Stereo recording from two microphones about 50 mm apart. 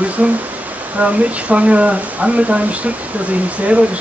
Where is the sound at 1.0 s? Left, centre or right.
Right.